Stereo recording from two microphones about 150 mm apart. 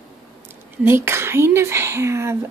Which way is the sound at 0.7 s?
15° right (ahead or behind).